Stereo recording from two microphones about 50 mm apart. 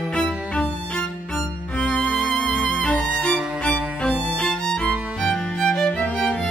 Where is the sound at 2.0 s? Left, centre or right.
Centre.